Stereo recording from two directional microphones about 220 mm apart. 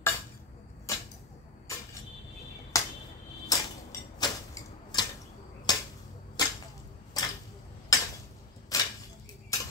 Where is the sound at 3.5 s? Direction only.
15° left (ahead or behind).